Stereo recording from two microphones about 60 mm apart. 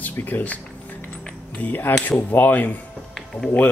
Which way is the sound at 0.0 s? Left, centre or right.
Left.